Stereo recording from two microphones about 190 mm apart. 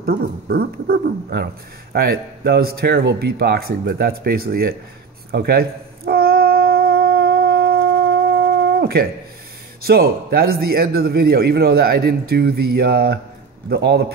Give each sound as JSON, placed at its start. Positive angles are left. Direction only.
{"t": 0.0, "sound": "speech", "side_deg": -55}
{"t": 5.3, "sound": "a sound", "side_deg": -55}
{"t": 9.8, "sound": "speech", "side_deg": -55}